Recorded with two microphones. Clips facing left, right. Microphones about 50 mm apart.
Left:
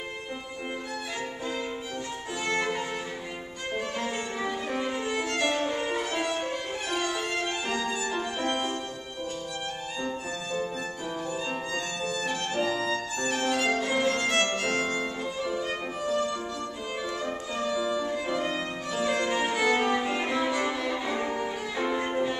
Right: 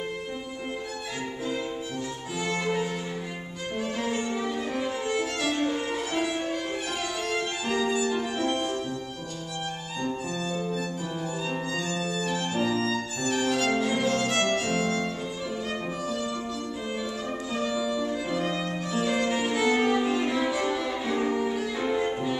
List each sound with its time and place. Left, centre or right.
2.4 s music: centre
4.0 s violin: centre
8.5 s music: left
11.7 s violin: centre
17.6 s violin: centre
18.9 s music: centre